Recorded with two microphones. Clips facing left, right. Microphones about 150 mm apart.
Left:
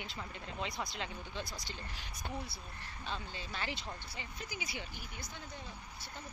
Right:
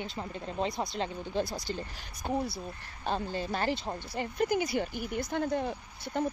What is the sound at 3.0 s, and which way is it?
Speech, 50° right (ahead or behind).